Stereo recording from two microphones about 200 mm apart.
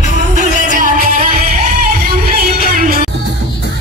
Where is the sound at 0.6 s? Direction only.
40° right (ahead or behind).